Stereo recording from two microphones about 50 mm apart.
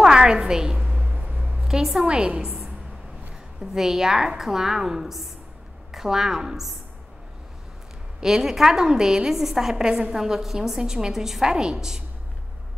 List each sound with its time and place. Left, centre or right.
0.0 s a sound: centre
1.4 s a sound: right
1.7 s a woman's voice: centre
2.0 s a woman's voice: centre
3.7 s a woman's voice: centre
8.2 s a woman's voice: centre